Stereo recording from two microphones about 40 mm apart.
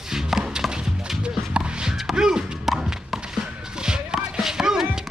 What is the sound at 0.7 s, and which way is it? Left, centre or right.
Music, right.